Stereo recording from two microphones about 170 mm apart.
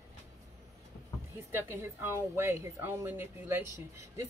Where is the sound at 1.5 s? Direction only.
15° right (ahead or behind).